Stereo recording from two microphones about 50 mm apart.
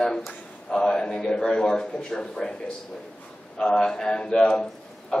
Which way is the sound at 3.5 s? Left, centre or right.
Centre.